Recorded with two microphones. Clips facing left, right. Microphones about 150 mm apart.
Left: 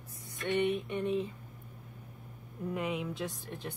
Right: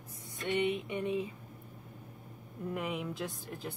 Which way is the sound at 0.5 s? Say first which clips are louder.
Left 2 dB; 20° right (ahead or behind).